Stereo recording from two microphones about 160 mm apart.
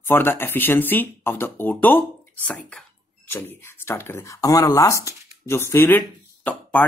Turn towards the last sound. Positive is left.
turn(degrees=10)  # may be behind; listen again after turning